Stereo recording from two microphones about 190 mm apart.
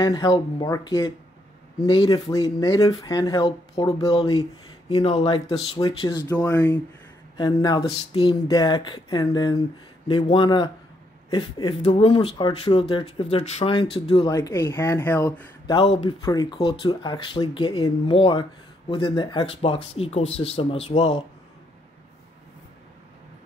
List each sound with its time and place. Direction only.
0.0 s speech: 20° left (ahead or behind)
14.3 s speech: 15° left (ahead or behind); by 21.2 s 30° left (ahead or behind)